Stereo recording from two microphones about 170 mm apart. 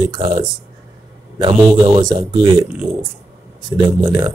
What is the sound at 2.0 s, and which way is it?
Speech, 25° right (ahead or behind).